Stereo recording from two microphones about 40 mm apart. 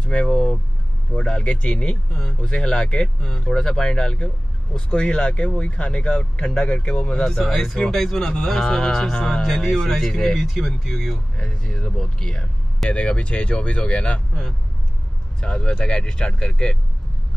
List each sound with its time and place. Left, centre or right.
0.0 s speech: left
2.1 s speech: centre
7.3 s speech: centre
11.3 s speech: centre
15.4 s speech: left